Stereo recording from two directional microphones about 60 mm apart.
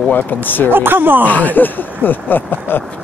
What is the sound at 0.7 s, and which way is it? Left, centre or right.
Speech, right.